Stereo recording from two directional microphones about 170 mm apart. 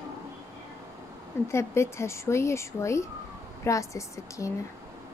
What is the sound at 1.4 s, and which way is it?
A woman's voice, 15° left (ahead or behind).